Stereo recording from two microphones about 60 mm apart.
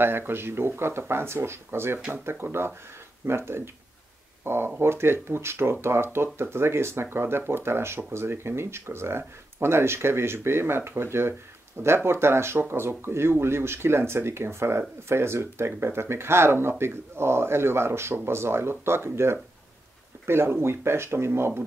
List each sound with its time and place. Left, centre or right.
0.0 s speech: right
2.0 s speech: centre
2.2 s speech: right